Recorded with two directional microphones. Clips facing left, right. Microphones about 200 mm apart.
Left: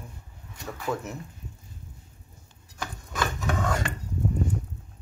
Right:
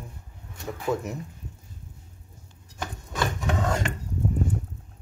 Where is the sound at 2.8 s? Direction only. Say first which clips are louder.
Right 1 dB; 25° right (ahead or behind).